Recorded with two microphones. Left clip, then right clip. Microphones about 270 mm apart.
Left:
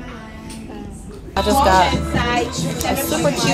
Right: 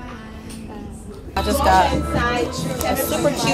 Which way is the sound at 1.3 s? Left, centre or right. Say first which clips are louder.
Left 2 dB; centre.